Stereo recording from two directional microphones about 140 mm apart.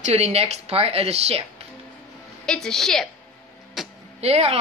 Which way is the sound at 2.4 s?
5° left (ahead or behind).